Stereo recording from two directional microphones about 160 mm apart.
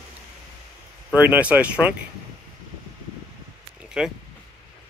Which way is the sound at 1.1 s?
10° right (ahead or behind).